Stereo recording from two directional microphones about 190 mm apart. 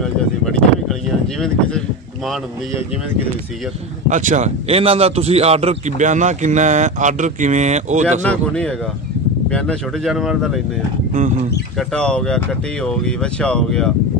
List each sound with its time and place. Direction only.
0.0 s a sound: centre (ahead or behind)
4.1 s a man's voice: 40° right (ahead or behind)
8.3 s speech: 5° left (ahead or behind)
11.9 s speech: 5° left (ahead or behind)